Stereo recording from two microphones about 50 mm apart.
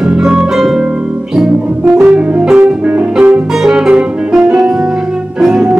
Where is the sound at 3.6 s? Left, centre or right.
Centre.